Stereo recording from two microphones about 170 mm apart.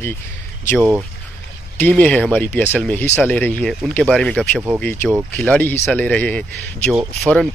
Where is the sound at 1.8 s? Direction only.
10° left (ahead or behind).